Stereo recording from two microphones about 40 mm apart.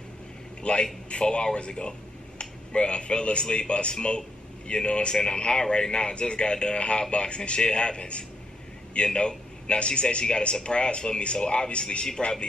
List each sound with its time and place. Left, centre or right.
0.6 s a man's voice: left